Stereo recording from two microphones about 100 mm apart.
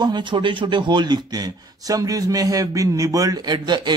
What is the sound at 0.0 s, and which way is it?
Speech, 50° right (ahead or behind).